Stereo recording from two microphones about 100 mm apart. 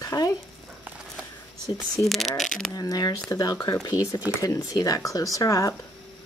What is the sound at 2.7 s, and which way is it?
Speech, 40° left (ahead or behind).